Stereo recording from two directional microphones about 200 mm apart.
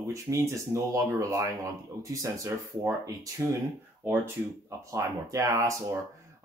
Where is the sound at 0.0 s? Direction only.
15° right (ahead or behind).